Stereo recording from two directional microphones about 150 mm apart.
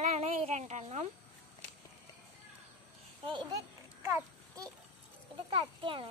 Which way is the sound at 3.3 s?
30° right (ahead or behind).